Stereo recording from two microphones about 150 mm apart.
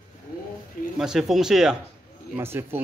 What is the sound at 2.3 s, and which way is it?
Speech, 15° right (ahead or behind).